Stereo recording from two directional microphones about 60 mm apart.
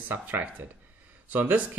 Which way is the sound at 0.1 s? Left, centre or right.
Right.